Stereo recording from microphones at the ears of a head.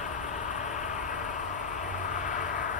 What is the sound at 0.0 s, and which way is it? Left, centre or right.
Vehicle, left.